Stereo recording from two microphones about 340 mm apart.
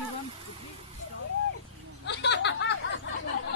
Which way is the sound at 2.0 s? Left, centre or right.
Left.